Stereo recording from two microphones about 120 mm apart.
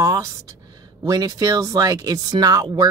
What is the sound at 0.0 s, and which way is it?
Speech, 25° right (ahead or behind).